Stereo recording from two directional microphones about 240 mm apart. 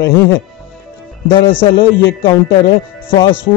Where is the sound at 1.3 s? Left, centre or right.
Left.